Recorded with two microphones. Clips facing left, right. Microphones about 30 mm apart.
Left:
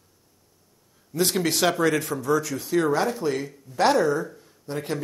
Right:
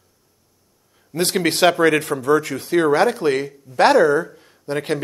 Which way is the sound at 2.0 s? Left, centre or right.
Right.